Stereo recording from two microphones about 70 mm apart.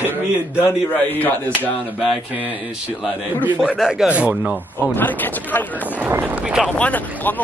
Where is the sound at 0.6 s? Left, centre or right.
Left.